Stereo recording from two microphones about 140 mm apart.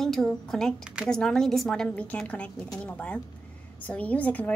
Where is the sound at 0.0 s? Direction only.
Centre (ahead or behind).